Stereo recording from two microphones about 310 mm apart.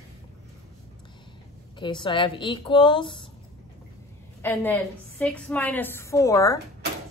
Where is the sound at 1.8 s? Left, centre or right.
Centre.